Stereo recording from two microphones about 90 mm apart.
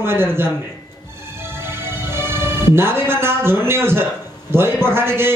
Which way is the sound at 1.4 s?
25° right (ahead or behind).